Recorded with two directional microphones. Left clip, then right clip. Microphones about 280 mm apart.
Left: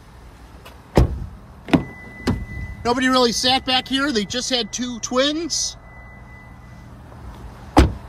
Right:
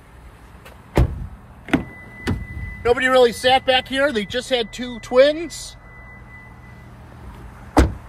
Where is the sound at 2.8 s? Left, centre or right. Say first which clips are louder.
Right 3 dB; centre.